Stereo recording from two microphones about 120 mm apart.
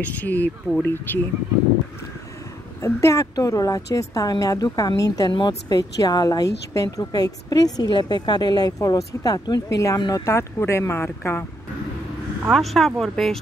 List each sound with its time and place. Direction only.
0.0 s speech: 15° left (ahead or behind)
2.8 s a woman's voice: 25° left (ahead or behind)
12.4 s speech: centre (ahead or behind)